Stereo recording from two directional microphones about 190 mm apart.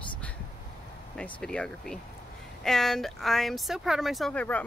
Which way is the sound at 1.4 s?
5° left (ahead or behind).